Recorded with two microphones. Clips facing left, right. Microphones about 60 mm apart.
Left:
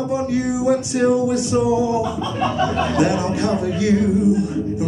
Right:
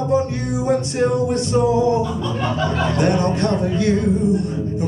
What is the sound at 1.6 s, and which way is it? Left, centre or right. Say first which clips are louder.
Music: right 4 dB; right.